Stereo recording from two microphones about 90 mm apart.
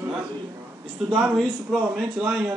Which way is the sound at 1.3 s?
5° right (ahead or behind).